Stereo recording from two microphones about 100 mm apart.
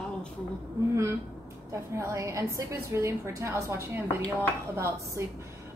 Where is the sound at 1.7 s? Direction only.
30° right (ahead or behind).